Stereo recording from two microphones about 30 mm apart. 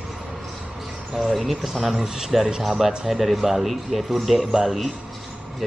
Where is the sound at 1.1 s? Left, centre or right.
Centre.